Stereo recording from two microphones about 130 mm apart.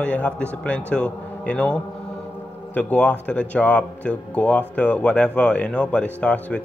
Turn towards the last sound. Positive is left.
turn(degrees=10)  # may be behind; listen again after turning